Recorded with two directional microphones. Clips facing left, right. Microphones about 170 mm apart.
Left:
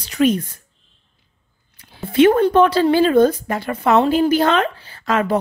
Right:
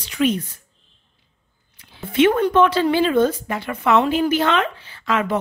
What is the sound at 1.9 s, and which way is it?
Speech, 40° left (ahead or behind).